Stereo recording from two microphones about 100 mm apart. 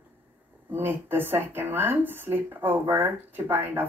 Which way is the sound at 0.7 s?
20° right (ahead or behind).